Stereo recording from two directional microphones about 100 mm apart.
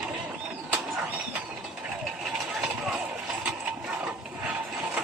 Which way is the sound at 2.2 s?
5° right (ahead or behind).